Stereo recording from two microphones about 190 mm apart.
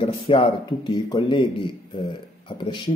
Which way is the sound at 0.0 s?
30° left (ahead or behind).